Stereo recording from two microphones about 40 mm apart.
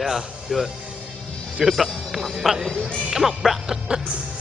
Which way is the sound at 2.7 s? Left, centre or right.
Left.